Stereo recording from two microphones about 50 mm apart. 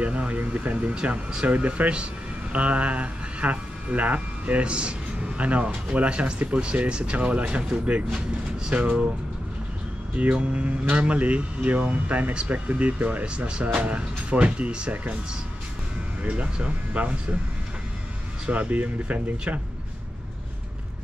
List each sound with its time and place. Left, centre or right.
0.0 s speech: right
10.1 s speech: right
16.2 s speech: right
18.5 s speech: right